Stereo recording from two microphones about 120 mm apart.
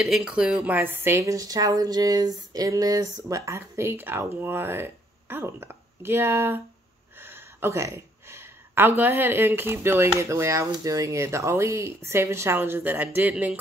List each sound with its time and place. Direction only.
0.0 s speech: 5° right (ahead or behind)